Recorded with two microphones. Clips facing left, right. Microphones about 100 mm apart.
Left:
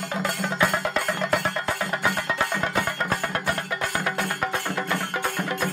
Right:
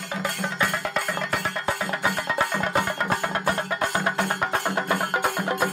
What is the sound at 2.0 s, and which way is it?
Music, 15° right (ahead or behind).